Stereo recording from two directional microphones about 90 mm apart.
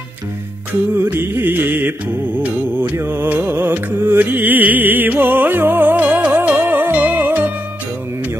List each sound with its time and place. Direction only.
0.9 s music: 25° right (ahead or behind)